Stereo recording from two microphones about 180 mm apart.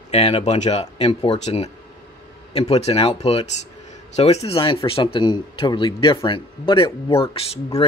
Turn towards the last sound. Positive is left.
turn(degrees=30)  # may be behind; listen again after turning